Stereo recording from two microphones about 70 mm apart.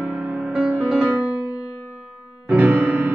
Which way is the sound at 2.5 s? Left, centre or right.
Right.